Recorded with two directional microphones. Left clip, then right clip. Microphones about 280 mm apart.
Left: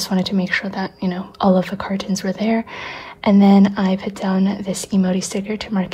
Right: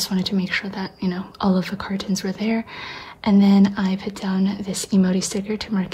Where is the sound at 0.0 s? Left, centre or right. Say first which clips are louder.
Left 3 dB; centre.